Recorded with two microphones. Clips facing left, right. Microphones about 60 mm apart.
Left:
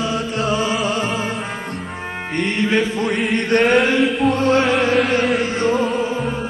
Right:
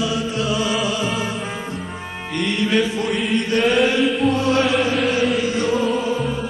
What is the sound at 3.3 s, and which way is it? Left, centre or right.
Chant, left.